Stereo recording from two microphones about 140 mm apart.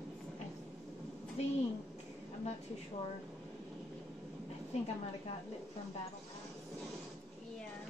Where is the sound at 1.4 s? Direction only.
50° left (ahead or behind).